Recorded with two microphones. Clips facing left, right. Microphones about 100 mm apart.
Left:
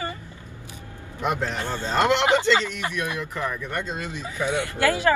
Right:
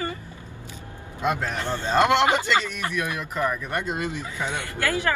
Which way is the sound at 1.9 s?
20° right (ahead or behind).